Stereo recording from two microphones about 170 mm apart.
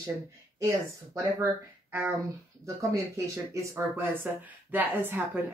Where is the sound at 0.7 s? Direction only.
15° right (ahead or behind).